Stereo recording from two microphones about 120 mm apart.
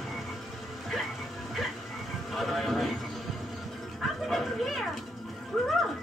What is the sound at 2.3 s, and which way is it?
Music, centre (ahead or behind).